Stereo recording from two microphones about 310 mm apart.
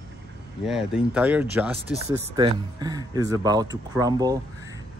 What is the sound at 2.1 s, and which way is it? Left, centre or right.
Speech, centre.